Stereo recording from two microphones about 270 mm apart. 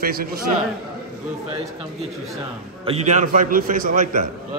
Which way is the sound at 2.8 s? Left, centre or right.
Right.